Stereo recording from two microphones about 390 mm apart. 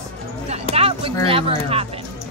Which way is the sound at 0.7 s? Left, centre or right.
Centre.